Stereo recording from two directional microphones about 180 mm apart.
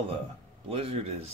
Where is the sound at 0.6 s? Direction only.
30° right (ahead or behind).